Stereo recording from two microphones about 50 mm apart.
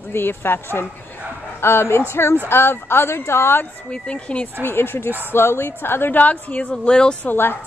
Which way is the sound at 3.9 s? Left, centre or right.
Left.